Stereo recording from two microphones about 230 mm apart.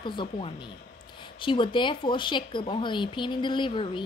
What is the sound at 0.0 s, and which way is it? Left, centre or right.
Speech, left.